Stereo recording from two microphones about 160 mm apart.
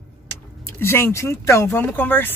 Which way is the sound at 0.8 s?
15° left (ahead or behind).